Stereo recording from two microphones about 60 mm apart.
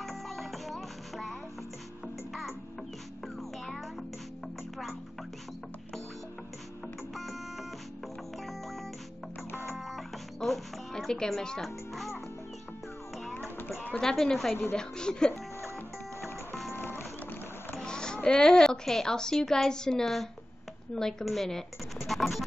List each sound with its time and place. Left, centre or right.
0.0 s music: centre
9.8 s speech: centre
13.6 s a sound: left
13.9 s a woman's voice: centre
16.7 s music: left
17.8 s a woman's voice: centre